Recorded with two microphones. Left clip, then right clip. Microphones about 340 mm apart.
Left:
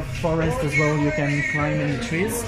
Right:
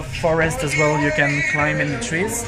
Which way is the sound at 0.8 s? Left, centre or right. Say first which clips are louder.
Right 7 dB; right.